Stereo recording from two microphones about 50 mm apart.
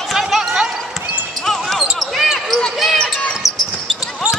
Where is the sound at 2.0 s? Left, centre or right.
Centre.